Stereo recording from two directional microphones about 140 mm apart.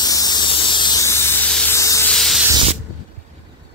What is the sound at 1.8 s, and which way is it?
Spray, 20° left (ahead or behind).